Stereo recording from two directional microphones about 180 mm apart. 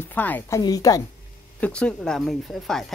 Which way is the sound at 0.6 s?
20° left (ahead or behind).